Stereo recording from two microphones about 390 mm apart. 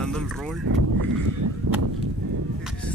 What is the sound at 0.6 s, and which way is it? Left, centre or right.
Speech, right.